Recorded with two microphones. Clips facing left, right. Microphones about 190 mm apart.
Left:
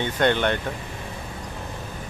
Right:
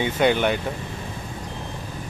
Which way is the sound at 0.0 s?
10° right (ahead or behind).